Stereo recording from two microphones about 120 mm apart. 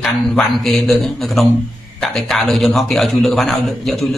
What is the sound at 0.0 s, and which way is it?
A man's voice, centre (ahead or behind).